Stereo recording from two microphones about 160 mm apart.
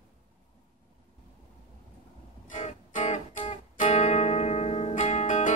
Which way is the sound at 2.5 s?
50° left (ahead or behind).